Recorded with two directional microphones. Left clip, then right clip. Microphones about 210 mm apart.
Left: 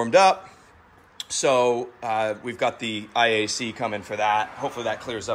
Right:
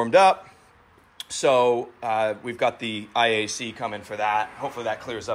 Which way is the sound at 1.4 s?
5° left (ahead or behind).